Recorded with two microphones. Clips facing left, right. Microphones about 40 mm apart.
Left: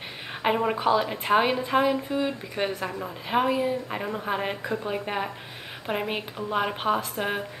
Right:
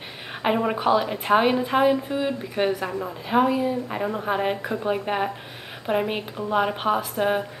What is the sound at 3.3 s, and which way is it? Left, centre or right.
Speech, centre.